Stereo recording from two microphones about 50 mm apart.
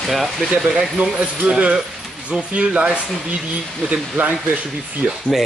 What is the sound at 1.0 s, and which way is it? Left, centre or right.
Speech, right.